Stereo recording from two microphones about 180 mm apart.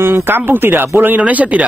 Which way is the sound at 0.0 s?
10° right (ahead or behind).